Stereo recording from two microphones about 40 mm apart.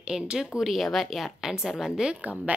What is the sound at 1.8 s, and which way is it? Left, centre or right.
Speech, centre.